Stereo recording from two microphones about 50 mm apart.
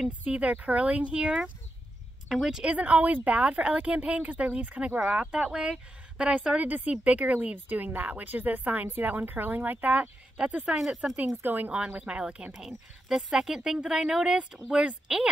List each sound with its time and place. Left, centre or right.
0.2 s speech: right
2.2 s speech: centre
2.6 s speech: right
10.3 s speech: right
10.6 s speech: centre
11.4 s speech: right
11.7 s speech: right
12.5 s speech: centre